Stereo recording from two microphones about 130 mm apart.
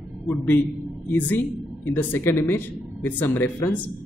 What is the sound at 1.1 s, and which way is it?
A man's voice, 15° left (ahead or behind).